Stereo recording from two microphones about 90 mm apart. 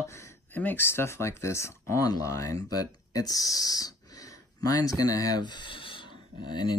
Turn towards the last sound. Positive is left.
turn(degrees=55)  # may be behind; listen again after turning